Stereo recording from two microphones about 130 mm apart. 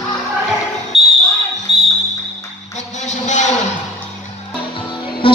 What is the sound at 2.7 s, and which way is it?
Music, 65° left (ahead or behind).